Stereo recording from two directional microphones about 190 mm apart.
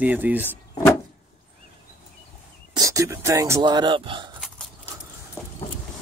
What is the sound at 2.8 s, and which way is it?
Speech, 15° right (ahead or behind).